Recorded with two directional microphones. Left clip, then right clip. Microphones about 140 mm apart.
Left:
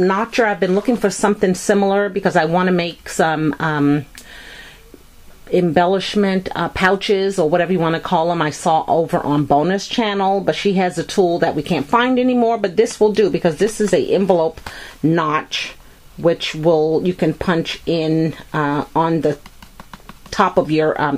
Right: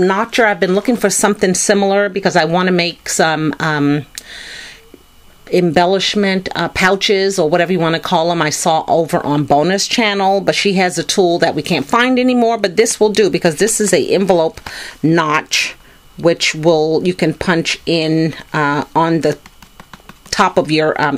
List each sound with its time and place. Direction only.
0.0 s speech: 30° right (ahead or behind)
5.5 s speech: 30° right (ahead or behind)